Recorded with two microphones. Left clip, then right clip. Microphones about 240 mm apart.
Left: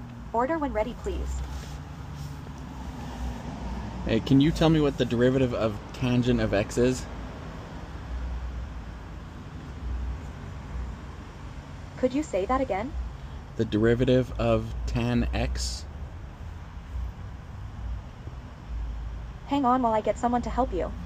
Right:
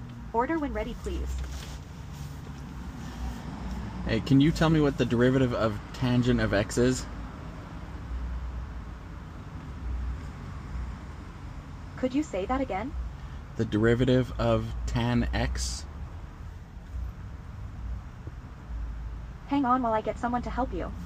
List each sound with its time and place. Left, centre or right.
0.4 s a woman's voice: centre
4.0 s speech: centre
12.0 s a woman's voice: centre
13.6 s speech: centre
19.5 s a woman's voice: centre